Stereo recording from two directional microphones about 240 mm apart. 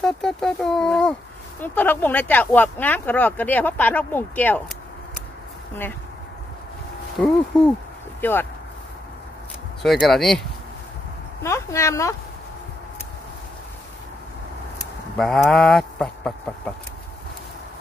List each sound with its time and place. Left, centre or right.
0.0 s speech: centre
7.2 s speech: centre
9.8 s speech: centre
11.4 s speech: centre
15.1 s speech: centre